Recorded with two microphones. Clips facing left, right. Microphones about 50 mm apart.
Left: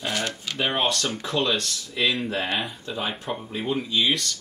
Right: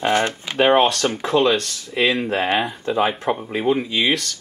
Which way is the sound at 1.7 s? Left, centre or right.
Right.